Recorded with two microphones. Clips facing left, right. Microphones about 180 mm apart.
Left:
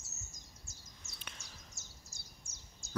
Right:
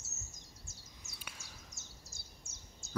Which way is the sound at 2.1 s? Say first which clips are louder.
Right 2 dB; 75° right (ahead or behind).